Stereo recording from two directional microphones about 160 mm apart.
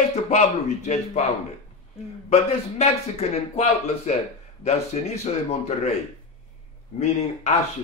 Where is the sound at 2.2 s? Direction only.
40° left (ahead or behind).